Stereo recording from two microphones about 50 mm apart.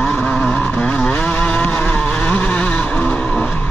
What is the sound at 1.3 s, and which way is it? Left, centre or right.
Vehicle, left.